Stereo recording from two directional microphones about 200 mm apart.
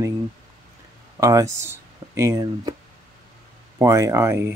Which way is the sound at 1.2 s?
15° right (ahead or behind).